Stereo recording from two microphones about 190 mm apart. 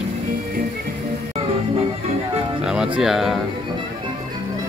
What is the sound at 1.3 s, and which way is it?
Music, 30° right (ahead or behind).